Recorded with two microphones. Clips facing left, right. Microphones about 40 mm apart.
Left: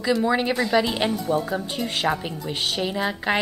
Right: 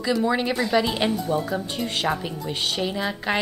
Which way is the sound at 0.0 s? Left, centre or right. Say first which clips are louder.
Left 1 dB; centre.